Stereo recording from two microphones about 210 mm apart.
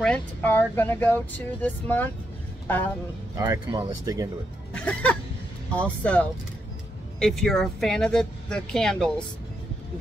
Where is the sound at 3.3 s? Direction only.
15° right (ahead or behind).